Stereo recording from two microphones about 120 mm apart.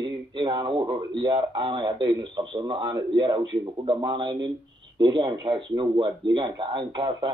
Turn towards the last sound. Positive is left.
turn(degrees=-35)  # may be behind; listen again after turning